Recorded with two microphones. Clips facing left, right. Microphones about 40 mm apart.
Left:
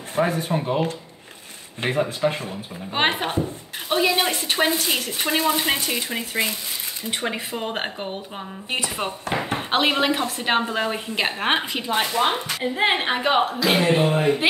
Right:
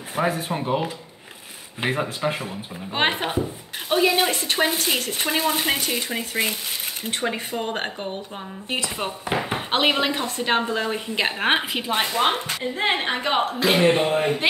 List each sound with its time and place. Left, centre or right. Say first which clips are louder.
0.1 s speech: left 2 dB; centre
11.1 s speech: right 1 dB; centre
12.7 s speech: left 2 dB; centre
13.9 s speech: left 1 dB; centre